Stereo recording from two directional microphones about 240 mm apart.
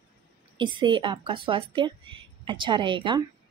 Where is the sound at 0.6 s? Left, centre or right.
Centre.